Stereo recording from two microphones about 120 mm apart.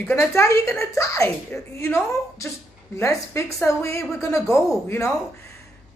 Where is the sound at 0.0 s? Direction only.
20° left (ahead or behind).